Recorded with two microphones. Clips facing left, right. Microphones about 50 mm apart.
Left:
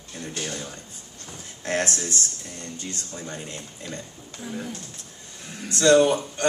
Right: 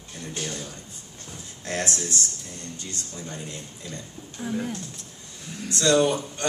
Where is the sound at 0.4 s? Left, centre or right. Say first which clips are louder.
Left 1 dB; left.